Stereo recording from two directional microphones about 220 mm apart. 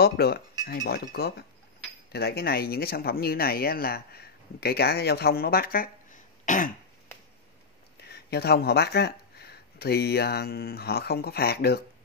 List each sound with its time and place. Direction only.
0.0 s speech: 45° left (ahead or behind)
8.0 s speech: 50° left (ahead or behind)